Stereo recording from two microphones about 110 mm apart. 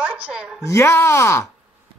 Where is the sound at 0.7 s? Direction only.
20° left (ahead or behind).